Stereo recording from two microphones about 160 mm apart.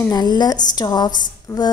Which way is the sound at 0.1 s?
25° left (ahead or behind).